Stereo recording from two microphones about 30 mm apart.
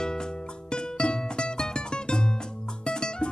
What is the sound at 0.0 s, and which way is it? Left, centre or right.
Music, left.